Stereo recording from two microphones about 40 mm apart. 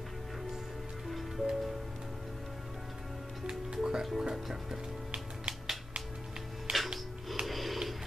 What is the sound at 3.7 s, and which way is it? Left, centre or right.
Music, centre.